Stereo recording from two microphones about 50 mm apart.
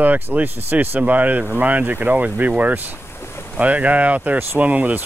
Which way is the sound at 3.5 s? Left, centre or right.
Right.